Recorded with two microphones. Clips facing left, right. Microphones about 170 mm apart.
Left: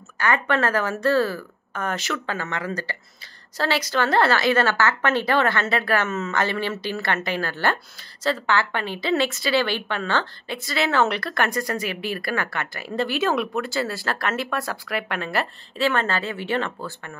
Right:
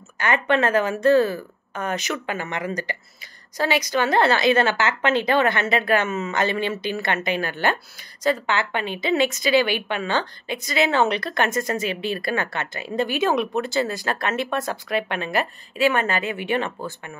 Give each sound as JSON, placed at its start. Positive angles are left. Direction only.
{"t": 0.2, "sound": "a woman's voice", "side_deg": -20}